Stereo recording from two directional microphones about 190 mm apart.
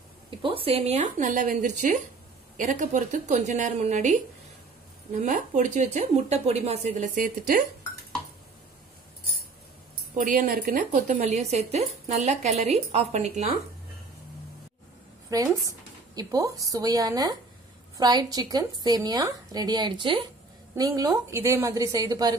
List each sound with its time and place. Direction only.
0.4 s a woman's voice: 30° right (ahead or behind); by 7.6 s 45° right (ahead or behind)
10.1 s a woman's voice: 45° right (ahead or behind)
15.2 s a woman's voice: 15° right (ahead or behind)